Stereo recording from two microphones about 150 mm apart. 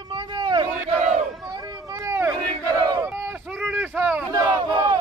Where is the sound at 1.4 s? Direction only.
25° right (ahead or behind).